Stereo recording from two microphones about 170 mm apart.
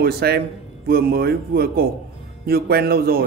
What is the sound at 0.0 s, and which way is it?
Music, 70° right (ahead or behind).